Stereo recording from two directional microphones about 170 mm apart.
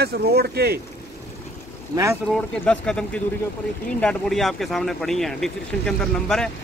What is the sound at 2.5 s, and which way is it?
Speech, 5° left (ahead or behind).